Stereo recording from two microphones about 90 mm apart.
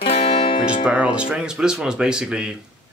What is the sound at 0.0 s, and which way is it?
Music, 90° left.